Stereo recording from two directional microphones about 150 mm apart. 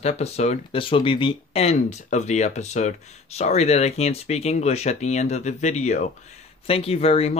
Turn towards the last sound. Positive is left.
turn(degrees=40)  # may be behind; listen again after turning